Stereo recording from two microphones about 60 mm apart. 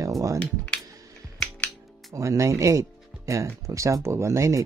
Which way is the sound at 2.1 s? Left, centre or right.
Right.